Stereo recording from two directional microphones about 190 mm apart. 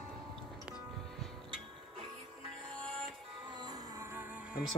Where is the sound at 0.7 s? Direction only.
Centre (ahead or behind).